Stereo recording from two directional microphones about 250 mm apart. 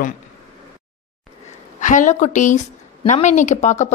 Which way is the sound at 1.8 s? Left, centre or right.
Left.